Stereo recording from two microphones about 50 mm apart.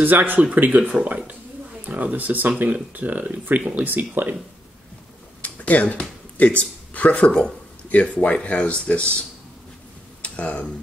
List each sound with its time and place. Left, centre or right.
0.0 s speech: right
5.4 s speech: left
10.2 s speech: left